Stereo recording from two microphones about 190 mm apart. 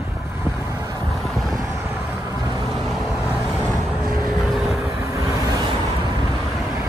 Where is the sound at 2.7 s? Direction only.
Centre (ahead or behind).